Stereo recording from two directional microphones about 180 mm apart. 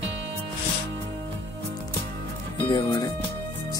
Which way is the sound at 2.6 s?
25° left (ahead or behind).